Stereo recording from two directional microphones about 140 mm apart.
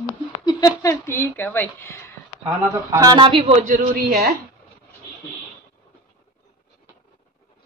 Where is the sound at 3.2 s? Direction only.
40° right (ahead or behind).